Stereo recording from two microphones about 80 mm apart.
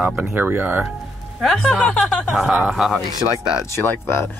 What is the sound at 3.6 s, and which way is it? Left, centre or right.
Speech, left.